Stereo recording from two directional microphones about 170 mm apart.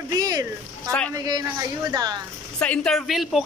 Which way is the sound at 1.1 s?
25° right (ahead or behind).